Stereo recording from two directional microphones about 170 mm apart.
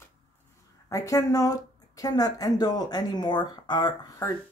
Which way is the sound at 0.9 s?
20° left (ahead or behind).